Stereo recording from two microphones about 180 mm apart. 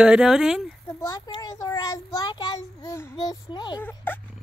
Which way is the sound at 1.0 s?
20° left (ahead or behind).